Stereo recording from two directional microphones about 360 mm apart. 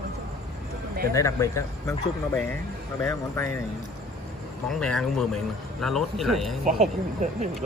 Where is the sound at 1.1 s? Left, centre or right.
Centre.